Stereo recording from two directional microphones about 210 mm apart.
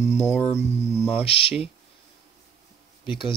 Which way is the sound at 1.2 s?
25° left (ahead or behind).